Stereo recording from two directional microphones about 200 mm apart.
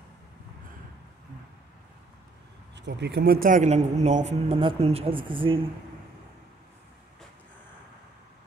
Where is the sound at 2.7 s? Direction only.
60° right (ahead or behind); by 5.6 s 25° right (ahead or behind).